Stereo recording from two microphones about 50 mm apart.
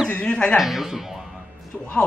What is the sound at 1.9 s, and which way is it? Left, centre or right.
Speech, centre.